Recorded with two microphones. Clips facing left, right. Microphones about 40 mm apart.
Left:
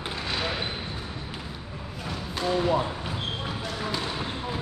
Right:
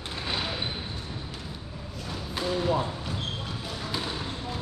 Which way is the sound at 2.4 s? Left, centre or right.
Centre.